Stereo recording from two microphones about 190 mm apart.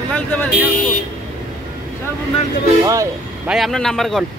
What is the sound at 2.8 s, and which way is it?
Speech, 20° right (ahead or behind).